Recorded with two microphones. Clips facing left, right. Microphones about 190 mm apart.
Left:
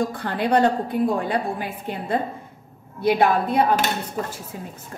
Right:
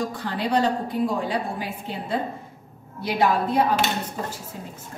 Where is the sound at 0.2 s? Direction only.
60° left (ahead or behind).